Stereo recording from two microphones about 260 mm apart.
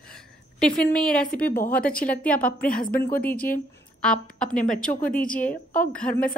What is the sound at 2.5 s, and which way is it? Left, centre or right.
Speech, left.